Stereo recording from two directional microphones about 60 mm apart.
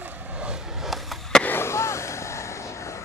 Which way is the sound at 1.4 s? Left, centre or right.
Left.